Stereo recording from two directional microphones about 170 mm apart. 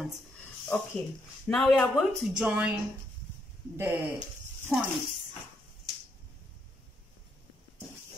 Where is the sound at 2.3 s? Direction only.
5° right (ahead or behind).